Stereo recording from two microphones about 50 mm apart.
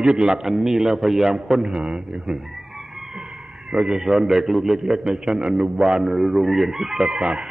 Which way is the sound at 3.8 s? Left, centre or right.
Centre.